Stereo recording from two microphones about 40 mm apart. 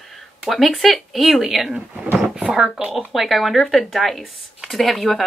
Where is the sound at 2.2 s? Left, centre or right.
Right.